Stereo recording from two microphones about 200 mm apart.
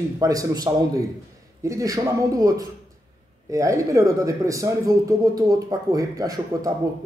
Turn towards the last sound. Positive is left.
turn(degrees=-15)  # may be behind; listen again after turning